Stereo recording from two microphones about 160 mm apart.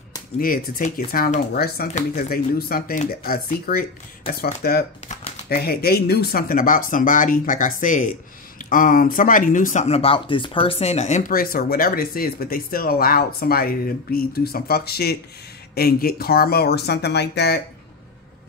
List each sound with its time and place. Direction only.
0.4 s speech: 60° left (ahead or behind)
5.0 s typewriter: 45° left (ahead or behind)
5.5 s speech: 75° left (ahead or behind); by 9.8 s 55° left (ahead or behind)
9.8 s speech: 40° left (ahead or behind); by 17.6 s 90° left